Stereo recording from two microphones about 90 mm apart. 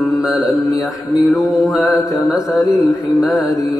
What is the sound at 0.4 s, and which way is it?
Mantra, 40° left (ahead or behind).